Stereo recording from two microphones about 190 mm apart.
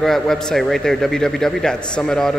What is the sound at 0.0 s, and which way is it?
A man's voice, centre (ahead or behind).